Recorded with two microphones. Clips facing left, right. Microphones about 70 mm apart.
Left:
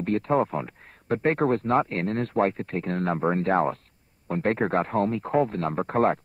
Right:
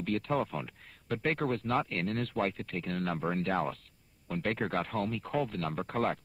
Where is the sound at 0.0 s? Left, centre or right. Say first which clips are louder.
Left 8 dB; left.